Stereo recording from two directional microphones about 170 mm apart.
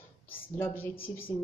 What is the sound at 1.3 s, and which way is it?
Speech, 20° left (ahead or behind).